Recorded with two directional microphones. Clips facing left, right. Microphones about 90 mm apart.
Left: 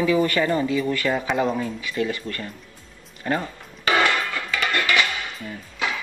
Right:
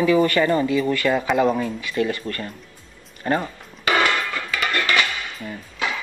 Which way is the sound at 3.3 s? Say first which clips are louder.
Right 3 dB; 35° right (ahead or behind).